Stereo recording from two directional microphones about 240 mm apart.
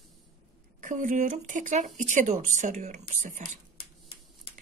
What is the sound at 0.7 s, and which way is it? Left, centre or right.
Speech, right.